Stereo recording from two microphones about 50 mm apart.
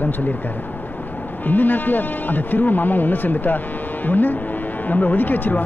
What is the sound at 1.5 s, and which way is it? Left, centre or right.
Speech, left.